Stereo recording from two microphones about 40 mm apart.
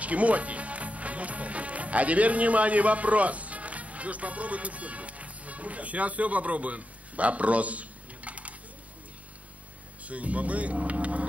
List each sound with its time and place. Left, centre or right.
0.0 s speech: right
10.0 s speech: right